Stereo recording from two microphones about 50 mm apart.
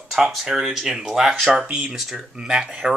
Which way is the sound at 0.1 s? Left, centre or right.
Centre.